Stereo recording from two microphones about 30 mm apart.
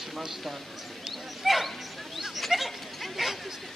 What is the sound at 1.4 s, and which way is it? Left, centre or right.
Speech, centre.